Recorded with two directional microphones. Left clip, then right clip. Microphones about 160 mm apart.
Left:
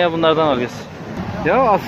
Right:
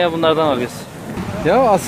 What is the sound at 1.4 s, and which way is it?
Speech, 90° right.